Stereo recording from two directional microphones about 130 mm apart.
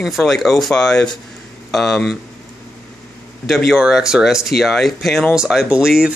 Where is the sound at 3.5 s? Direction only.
Centre (ahead or behind).